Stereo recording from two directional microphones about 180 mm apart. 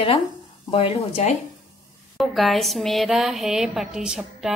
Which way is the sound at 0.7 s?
30° left (ahead or behind).